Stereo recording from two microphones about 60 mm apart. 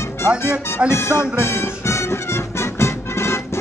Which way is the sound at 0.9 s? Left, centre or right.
Left.